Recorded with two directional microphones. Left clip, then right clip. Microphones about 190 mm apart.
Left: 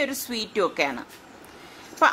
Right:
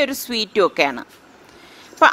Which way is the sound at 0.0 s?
40° right (ahead or behind).